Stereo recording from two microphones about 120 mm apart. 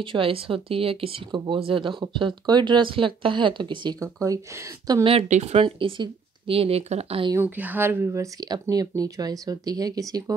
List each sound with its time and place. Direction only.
0.0 s speech: 45° right (ahead or behind)
4.0 s speech: 30° right (ahead or behind)
5.3 s speech: 65° right (ahead or behind)
7.3 s speech: 15° right (ahead or behind); by 10.3 s 30° right (ahead or behind)